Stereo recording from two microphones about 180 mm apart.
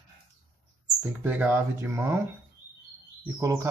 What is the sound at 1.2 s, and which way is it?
Speech, 10° right (ahead or behind).